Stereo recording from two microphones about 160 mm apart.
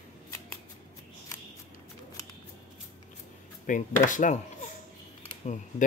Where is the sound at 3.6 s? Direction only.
55° left (ahead or behind).